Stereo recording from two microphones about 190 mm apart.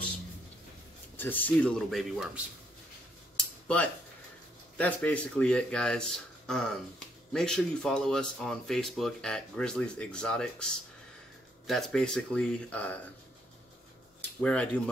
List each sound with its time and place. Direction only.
1.1 s speech: 10° left (ahead or behind)
3.3 s a sound: 5° left (ahead or behind)
4.7 s speech: 5° left (ahead or behind)
14.4 s speech: 5° left (ahead or behind)